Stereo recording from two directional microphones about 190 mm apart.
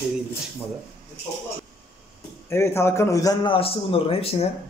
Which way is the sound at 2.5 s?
15° left (ahead or behind).